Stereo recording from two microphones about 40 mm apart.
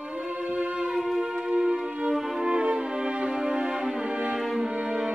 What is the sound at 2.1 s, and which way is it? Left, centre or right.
Music, centre.